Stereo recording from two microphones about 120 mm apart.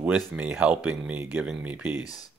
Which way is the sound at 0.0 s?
10° right (ahead or behind).